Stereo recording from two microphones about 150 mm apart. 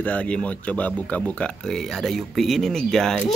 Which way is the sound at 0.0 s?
10° left (ahead or behind).